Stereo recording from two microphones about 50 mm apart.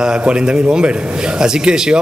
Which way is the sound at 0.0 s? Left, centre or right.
Centre.